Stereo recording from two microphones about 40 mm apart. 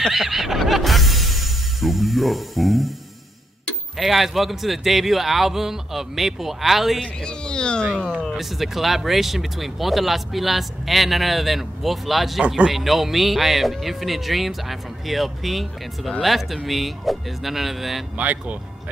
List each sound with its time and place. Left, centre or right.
0.1 s music: centre
3.9 s speech: centre
7.2 s speech: left
8.4 s speech: centre
12.4 s speech: right
12.7 s speech: centre
18.1 s speech: right